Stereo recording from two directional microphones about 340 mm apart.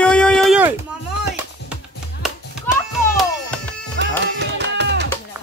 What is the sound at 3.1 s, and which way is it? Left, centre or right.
Music, centre.